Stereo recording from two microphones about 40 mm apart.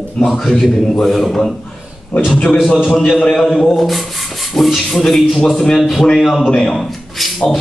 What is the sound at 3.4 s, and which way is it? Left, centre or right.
Speech, left.